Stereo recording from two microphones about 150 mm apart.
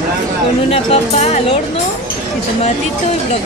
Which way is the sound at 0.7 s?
45° left (ahead or behind).